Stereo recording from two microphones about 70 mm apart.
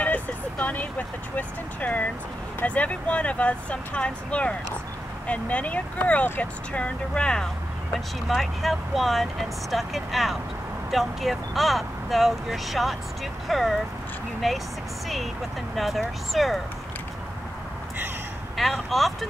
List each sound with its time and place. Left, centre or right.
0.0 s speech: left
7.9 s speech: centre
15.7 s speech: centre
18.6 s speech: centre